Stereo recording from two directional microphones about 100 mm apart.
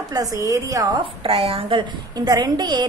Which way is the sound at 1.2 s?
65° right (ahead or behind).